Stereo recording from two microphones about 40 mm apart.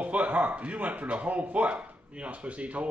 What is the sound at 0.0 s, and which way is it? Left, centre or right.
A man's voice, right.